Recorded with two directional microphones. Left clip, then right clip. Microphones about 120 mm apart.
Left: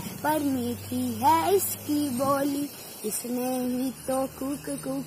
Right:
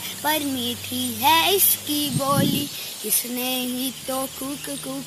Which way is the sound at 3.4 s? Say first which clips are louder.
Right 1 dB; 15° right (ahead or behind).